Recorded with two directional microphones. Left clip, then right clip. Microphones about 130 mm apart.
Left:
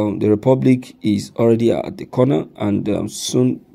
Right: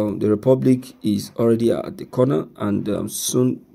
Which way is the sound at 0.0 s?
20° left (ahead or behind).